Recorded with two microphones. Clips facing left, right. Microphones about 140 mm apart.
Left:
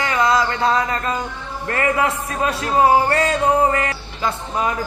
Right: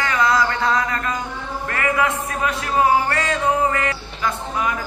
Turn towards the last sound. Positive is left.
turn(degrees=35)  # may be behind; listen again after turning